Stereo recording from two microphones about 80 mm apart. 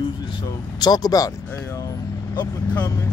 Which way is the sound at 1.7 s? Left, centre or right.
Left.